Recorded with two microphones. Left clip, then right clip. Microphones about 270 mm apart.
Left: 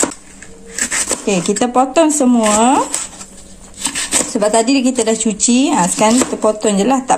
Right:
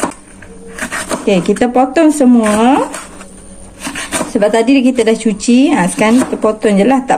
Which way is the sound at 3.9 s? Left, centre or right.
Centre.